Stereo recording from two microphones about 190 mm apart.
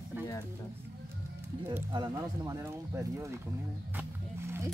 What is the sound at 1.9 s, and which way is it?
Speech, 20° right (ahead or behind).